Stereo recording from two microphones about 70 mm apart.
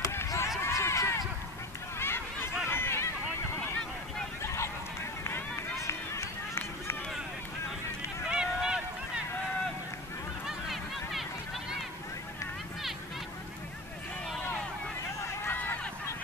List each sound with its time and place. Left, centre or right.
0.0 s chop: left
0.6 s run: left
2.0 s a sound: left
2.7 s vehicle: left
4.4 s honk: left
5.2 s run: left
8.3 s run: centre
10.4 s a sound: centre
15.4 s a sound: left